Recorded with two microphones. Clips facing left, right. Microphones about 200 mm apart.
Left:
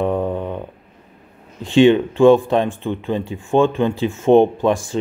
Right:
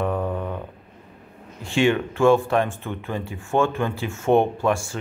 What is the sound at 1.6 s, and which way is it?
Speech, 20° left (ahead or behind).